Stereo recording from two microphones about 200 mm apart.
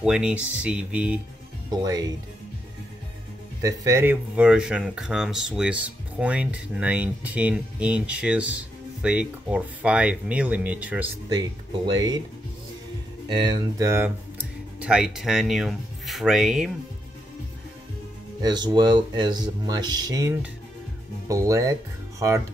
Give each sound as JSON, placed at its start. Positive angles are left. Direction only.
{"t": 0.0, "sound": "speech", "side_deg": -5}
{"t": 1.7, "sound": "speech", "side_deg": -20}
{"t": 3.6, "sound": "speech", "side_deg": -15}
{"t": 11.3, "sound": "speech", "side_deg": -20}
{"t": 13.3, "sound": "speech", "side_deg": -20}
{"t": 18.4, "sound": "speech", "side_deg": -20}